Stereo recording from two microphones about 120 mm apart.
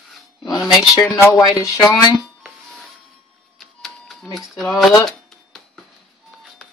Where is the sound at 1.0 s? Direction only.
30° left (ahead or behind).